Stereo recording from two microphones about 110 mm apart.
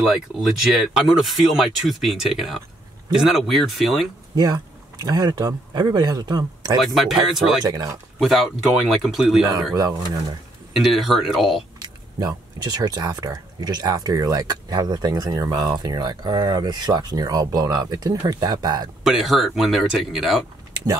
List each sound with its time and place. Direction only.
0.0 s speech: 5° right (ahead or behind)
4.4 s speech: 40° right (ahead or behind)
6.8 s speech: centre (ahead or behind)
7.6 s speech: 35° right (ahead or behind)
8.2 s speech: centre (ahead or behind)
10.7 s speech: centre (ahead or behind)
12.2 s speech: 40° right (ahead or behind)
19.0 s speech: 5° right (ahead or behind)